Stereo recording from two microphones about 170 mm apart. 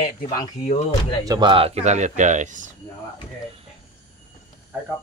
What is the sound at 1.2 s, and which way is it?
Speech, 25° right (ahead or behind).